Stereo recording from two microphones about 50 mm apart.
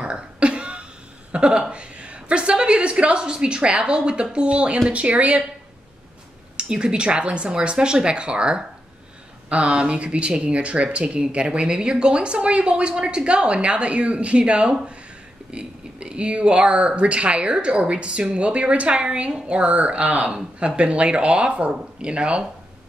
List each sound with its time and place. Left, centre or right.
0.0 s cough: right
1.3 s speech: right
6.5 s speech: centre